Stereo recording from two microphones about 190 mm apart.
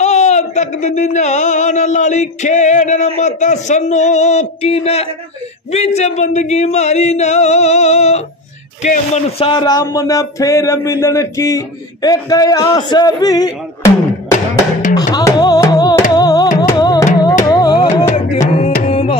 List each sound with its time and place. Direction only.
0.0 s speech: 35° left (ahead or behind); by 13.9 s 20° left (ahead or behind)
15.0 s music: 20° left (ahead or behind)
18.1 s music: 30° left (ahead or behind)